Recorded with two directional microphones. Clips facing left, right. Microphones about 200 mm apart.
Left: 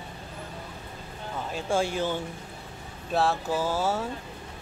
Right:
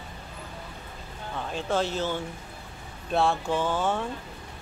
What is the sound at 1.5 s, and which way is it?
Speech, 10° left (ahead or behind).